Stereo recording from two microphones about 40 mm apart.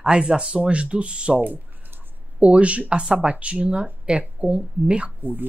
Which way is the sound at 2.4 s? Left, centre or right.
Right.